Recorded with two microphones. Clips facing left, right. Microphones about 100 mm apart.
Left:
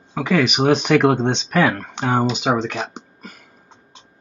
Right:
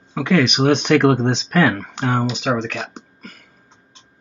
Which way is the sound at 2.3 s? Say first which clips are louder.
Left 1 dB; 20° left (ahead or behind).